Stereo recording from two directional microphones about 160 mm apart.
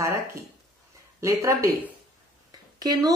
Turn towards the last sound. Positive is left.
turn(degrees=-25)  # may be behind; listen again after turning